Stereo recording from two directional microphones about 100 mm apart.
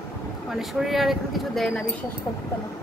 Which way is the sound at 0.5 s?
5° right (ahead or behind).